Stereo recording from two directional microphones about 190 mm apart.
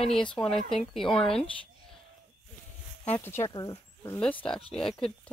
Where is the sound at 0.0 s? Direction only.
5° left (ahead or behind).